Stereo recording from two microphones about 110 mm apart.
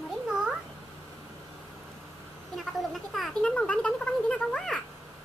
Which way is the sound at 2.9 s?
Centre (ahead or behind).